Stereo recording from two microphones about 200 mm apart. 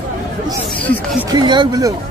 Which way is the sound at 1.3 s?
20° right (ahead or behind).